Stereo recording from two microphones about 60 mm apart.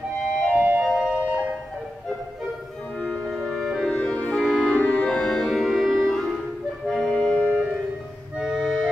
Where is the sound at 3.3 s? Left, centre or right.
Centre.